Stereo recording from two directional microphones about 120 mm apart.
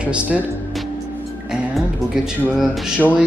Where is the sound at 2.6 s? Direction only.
Centre (ahead or behind).